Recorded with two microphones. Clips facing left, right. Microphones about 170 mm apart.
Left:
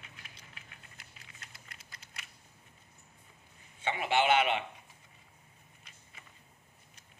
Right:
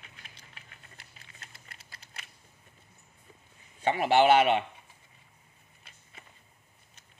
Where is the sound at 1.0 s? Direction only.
30° right (ahead or behind).